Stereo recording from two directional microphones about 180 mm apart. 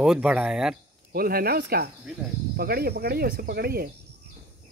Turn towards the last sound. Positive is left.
turn(degrees=-60)  # may be behind; listen again after turning